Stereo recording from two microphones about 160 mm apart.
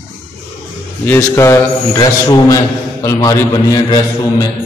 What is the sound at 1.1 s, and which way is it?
A man's voice, 15° left (ahead or behind).